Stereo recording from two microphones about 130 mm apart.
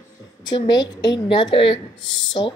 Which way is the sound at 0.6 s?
35° left (ahead or behind).